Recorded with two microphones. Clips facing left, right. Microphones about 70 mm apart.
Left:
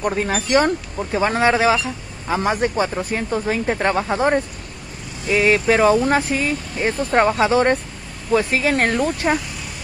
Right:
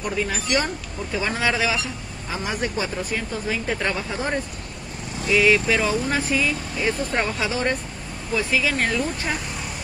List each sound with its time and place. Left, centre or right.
0.0 s speech: left
4.1 s speech: left
5.3 s speech: left